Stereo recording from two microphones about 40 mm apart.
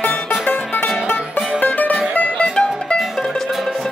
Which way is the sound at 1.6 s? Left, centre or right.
Left.